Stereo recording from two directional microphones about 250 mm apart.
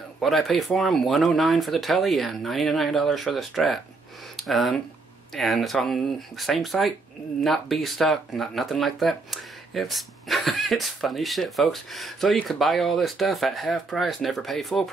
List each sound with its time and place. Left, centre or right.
0.2 s speech: centre